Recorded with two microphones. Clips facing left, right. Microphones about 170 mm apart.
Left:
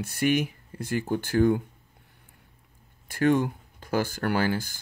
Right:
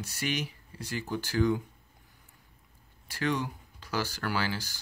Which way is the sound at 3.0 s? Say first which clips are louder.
Left 8 dB; 50° left (ahead or behind).